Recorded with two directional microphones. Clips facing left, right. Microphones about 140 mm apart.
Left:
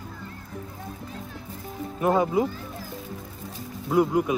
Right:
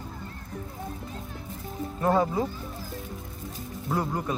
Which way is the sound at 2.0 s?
15° left (ahead or behind).